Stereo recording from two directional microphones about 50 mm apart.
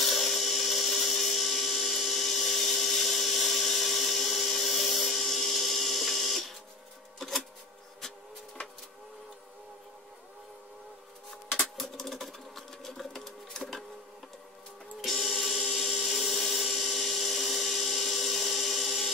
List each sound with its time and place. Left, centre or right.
0.0 s a sound: centre
11.7 s sewing machine: centre
15.0 s music: centre